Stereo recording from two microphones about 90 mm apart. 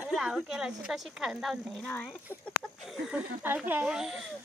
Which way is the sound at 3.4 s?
20° right (ahead or behind).